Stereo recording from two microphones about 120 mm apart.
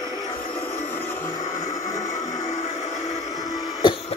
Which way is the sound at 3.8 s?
40° left (ahead or behind).